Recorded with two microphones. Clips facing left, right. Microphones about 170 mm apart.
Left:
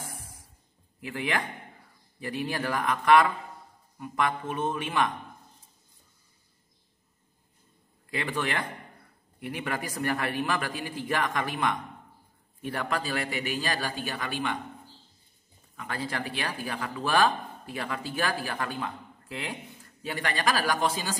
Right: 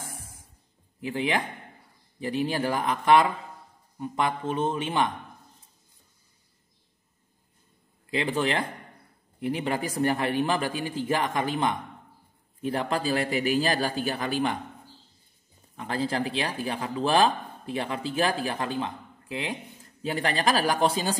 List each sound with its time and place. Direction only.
1.0 s speech: 20° right (ahead or behind)
8.1 s a man's voice: 25° right (ahead or behind)
15.7 s speech: 30° right (ahead or behind)